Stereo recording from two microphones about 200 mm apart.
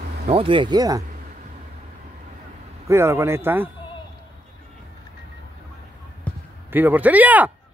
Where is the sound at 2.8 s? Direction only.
15° right (ahead or behind).